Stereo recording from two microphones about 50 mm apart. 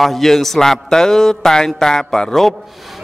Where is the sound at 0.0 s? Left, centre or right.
Centre.